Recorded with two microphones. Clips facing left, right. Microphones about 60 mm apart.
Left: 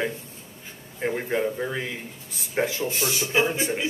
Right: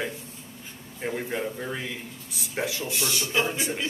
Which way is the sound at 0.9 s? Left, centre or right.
Left.